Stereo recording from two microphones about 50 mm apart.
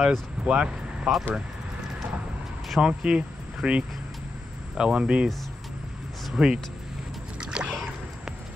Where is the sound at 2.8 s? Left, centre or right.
Centre.